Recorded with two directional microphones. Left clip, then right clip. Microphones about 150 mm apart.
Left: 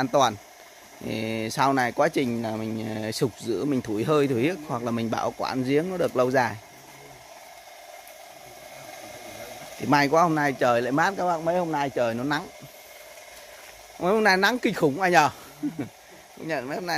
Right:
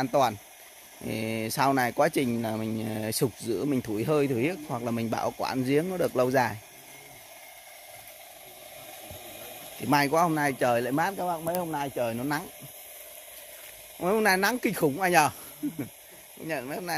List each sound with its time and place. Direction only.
0.0 s speech: 10° right (ahead or behind)
4.8 s speech: 15° right (ahead or behind)
9.8 s speech: 10° right (ahead or behind)
11.2 s speech: 5° left (ahead or behind)
13.9 s speech: 10° right (ahead or behind)